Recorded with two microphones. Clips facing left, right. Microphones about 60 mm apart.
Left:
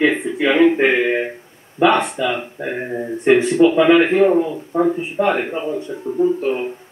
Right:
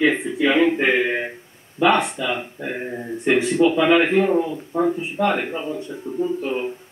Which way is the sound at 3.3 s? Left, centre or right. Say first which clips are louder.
Left 4 dB; centre.